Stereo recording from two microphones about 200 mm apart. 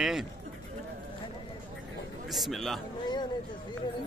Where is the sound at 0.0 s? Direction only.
Centre (ahead or behind).